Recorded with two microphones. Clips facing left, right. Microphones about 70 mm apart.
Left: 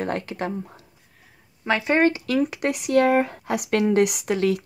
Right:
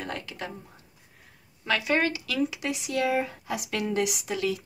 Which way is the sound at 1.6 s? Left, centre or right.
Left.